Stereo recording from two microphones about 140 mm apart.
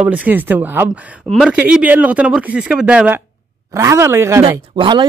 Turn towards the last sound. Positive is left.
turn(degrees=-35)  # may be behind; listen again after turning